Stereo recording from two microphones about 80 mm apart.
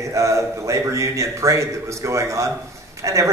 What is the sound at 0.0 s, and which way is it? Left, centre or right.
A man's voice, right.